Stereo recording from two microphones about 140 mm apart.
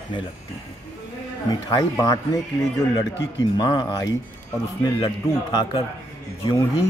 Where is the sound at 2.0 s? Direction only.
25° left (ahead or behind).